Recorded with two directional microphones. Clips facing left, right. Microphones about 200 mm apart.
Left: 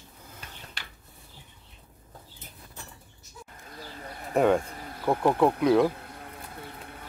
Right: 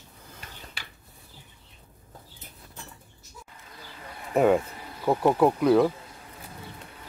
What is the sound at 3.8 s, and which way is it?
Bird, 40° left (ahead or behind).